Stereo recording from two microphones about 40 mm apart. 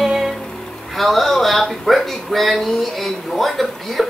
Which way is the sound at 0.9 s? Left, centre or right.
Centre.